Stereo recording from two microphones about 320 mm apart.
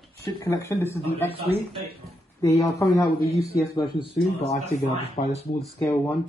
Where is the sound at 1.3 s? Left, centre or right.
Centre.